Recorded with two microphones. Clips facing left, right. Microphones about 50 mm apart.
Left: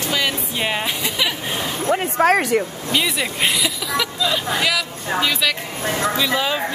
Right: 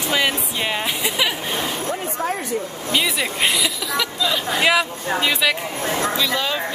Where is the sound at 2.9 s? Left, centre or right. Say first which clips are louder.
Right 1 dB; centre.